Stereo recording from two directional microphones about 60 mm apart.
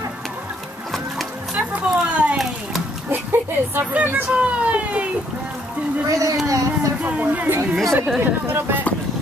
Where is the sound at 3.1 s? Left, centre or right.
Right.